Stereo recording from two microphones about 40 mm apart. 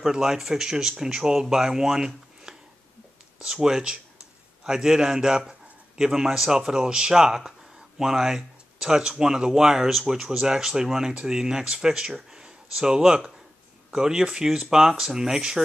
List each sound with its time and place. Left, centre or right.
0.1 s a man's voice: centre
3.6 s a man's voice: centre